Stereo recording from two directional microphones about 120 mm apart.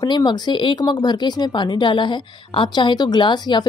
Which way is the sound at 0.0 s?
40° left (ahead or behind).